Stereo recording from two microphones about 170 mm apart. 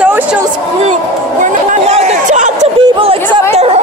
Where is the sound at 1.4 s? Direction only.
40° right (ahead or behind).